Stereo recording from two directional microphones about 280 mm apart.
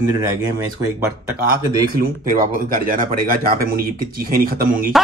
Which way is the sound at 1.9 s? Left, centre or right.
Right.